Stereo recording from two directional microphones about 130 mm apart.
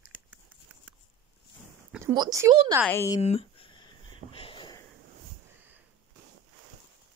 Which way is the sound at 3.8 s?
45° left (ahead or behind).